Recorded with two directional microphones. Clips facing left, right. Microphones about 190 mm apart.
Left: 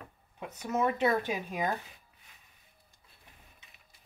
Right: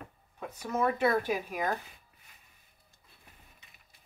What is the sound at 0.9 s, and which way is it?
Speech, 20° left (ahead or behind).